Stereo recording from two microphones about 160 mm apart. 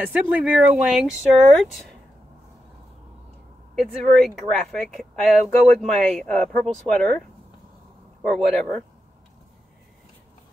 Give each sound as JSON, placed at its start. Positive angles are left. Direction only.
{"t": 0.0, "sound": "speech", "side_deg": -10}
{"t": 3.7, "sound": "speech", "side_deg": 0}
{"t": 8.3, "sound": "speech", "side_deg": 5}